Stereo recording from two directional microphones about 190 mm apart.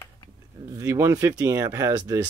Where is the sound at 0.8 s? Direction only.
15° right (ahead or behind).